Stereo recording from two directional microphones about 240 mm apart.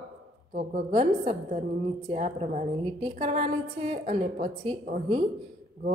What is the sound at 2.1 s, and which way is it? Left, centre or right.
A woman's voice, right.